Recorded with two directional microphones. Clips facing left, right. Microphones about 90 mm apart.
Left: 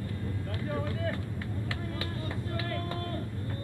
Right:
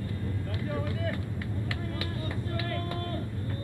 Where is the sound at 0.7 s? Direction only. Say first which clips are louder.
Even; 30° left (ahead or behind).